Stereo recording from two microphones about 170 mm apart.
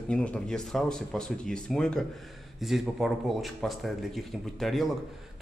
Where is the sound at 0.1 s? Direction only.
5° left (ahead or behind).